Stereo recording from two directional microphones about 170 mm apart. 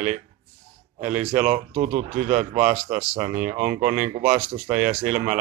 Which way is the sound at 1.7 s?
45° right (ahead or behind).